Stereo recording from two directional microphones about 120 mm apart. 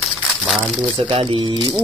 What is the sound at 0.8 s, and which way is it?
Speech, 45° right (ahead or behind).